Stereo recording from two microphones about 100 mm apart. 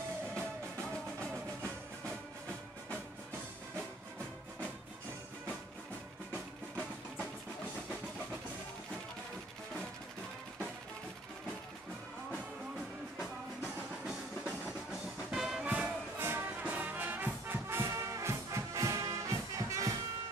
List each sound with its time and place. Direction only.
13.2 s music: 5° right (ahead or behind)
16.3 s brass instrument: 20° right (ahead or behind)